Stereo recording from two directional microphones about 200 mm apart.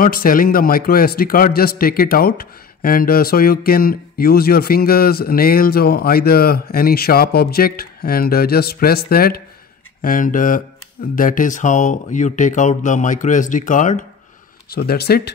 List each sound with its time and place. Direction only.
0.0 s a man's voice: 45° left (ahead or behind)
14.7 s a man's voice: 50° left (ahead or behind)